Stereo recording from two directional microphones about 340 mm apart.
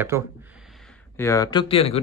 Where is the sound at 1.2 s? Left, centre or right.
Centre.